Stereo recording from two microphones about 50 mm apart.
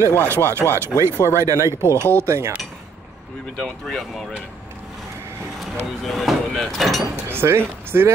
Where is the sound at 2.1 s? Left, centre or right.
Right.